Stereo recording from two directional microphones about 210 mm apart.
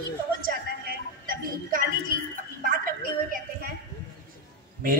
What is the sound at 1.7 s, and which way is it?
Music, 40° right (ahead or behind).